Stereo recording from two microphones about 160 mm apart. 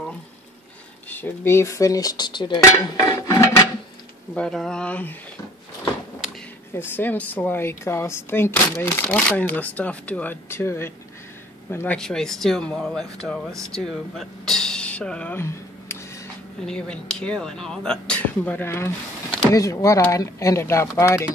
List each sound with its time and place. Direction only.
1.0 s speech: 10° left (ahead or behind)
4.3 s a woman's voice: 5° left (ahead or behind)
6.7 s a woman's voice: 15° left (ahead or behind)